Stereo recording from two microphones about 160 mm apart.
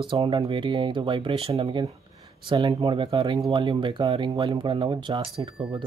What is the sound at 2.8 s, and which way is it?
Speech, 35° right (ahead or behind).